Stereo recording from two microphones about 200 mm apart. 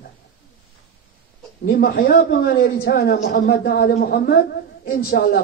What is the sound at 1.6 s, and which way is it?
A man's voice, 50° left (ahead or behind).